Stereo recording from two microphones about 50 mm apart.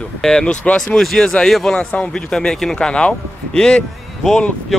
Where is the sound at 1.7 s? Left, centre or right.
Centre.